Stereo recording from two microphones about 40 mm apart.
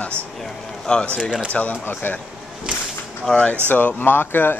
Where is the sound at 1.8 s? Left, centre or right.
Left.